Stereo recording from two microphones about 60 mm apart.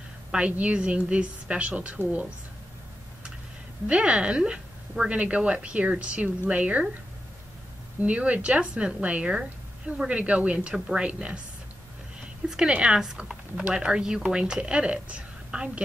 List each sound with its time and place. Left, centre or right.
0.3 s speech: right
3.8 s speech: centre
8.0 s speech: right
12.4 s a woman's voice: centre